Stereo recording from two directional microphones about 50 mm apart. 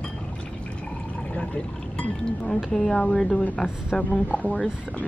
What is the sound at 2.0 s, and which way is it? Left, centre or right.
Speech, centre.